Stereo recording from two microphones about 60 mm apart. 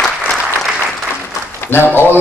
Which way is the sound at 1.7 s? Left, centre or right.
Left.